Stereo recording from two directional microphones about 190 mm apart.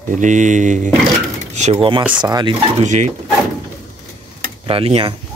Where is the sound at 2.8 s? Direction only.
40° right (ahead or behind).